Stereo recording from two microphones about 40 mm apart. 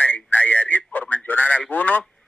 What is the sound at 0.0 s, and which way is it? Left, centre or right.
Whistling, left.